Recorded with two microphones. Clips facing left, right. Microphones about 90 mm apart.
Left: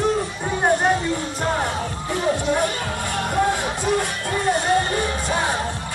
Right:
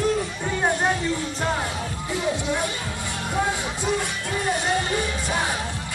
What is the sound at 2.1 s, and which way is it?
Music, 50° left (ahead or behind).